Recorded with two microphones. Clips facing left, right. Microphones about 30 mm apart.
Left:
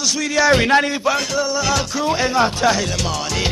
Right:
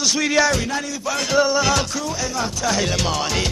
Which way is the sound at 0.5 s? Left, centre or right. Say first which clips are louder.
Left 9 dB; left.